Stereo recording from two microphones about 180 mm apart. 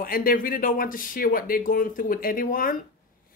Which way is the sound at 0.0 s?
55° left (ahead or behind).